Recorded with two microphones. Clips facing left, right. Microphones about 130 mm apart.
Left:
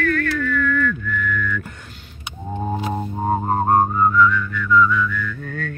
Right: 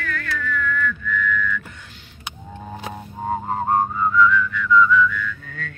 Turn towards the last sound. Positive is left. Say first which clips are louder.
# left 4 dB
turn(degrees=50)  # may be behind; listen again after turning